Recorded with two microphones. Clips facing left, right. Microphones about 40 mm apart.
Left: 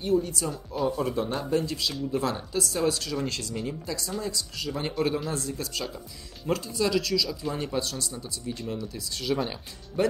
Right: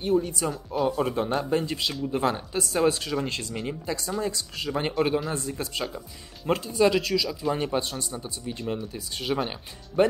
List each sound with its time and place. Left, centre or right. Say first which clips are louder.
0.0 s speech: right 1 dB; right